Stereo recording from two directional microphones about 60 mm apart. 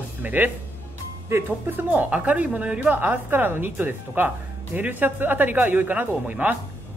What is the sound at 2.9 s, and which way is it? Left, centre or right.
Speech, right.